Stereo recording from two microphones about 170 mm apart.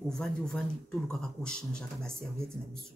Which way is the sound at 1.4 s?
5° left (ahead or behind).